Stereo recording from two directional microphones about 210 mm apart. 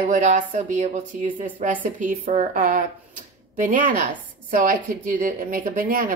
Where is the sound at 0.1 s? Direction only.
35° right (ahead or behind).